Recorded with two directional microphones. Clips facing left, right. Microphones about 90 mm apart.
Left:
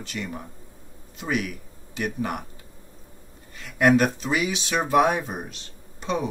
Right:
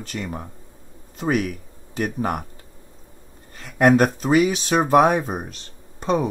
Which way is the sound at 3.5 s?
40° right (ahead or behind).